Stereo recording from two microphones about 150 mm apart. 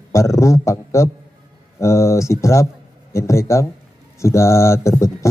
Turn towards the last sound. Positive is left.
turn(degrees=20)  # may be behind; listen again after turning